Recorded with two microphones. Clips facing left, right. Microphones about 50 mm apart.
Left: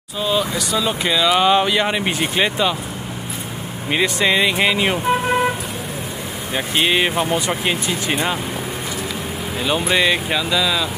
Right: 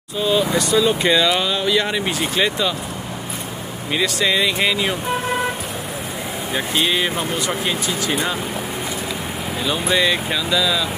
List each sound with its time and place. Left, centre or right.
0.2 s speech: centre
1.4 s speech: left
3.9 s speech: left
6.7 s speech: left
9.6 s speech: centre